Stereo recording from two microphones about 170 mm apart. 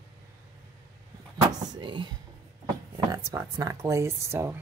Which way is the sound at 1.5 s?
25° right (ahead or behind).